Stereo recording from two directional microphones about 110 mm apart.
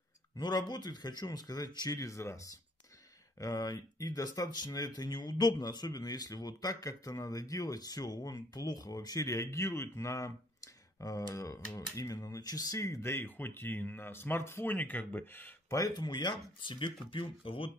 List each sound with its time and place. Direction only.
0.4 s speech: 40° left (ahead or behind); by 15.5 s 15° left (ahead or behind)
15.7 s speech: 35° left (ahead or behind); by 17.6 s 55° left (ahead or behind)